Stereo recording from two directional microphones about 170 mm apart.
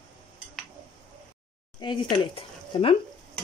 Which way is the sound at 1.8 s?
25° left (ahead or behind).